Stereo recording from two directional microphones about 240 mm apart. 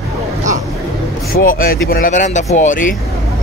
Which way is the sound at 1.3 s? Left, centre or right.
Left.